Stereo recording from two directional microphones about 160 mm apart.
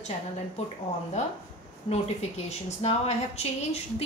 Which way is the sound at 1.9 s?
45° left (ahead or behind).